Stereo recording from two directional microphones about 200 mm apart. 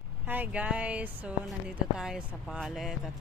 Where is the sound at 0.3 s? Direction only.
10° right (ahead or behind).